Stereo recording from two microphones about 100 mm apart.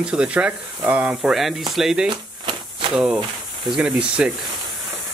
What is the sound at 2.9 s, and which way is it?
Speech, 10° right (ahead or behind).